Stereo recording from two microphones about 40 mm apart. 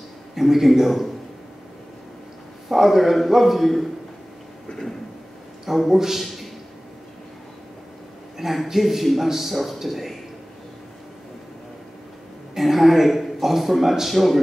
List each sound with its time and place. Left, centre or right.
0.3 s speech: centre
2.7 s speech: centre
4.6 s a sound: centre
5.9 s a man's voice: centre
6.2 s a sound: centre
8.4 s speech: centre
12.5 s speech: centre